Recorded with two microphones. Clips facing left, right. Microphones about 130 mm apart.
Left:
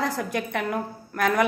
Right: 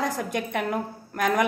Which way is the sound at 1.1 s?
20° right (ahead or behind).